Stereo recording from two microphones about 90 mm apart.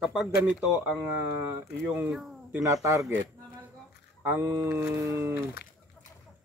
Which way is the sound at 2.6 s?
40° right (ahead or behind).